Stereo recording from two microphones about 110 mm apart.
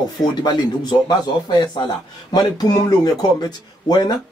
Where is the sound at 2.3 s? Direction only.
35° left (ahead or behind).